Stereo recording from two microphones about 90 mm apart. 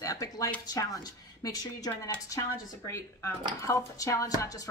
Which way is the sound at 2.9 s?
30° left (ahead or behind).